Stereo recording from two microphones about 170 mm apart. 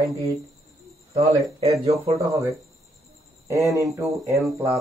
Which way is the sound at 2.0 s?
20° right (ahead or behind).